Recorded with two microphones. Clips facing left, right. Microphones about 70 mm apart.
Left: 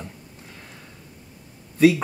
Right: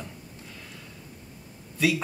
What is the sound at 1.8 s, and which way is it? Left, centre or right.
Speech, left.